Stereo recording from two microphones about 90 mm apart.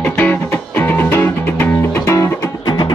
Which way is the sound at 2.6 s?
55° left (ahead or behind).